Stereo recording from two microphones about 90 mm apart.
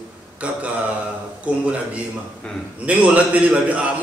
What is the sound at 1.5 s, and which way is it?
Speech, 15° right (ahead or behind).